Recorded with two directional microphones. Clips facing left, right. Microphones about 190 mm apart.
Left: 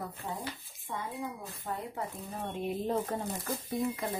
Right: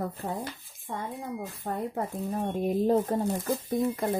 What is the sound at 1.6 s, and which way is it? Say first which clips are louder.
Speech: right 5 dB; 45° right (ahead or behind).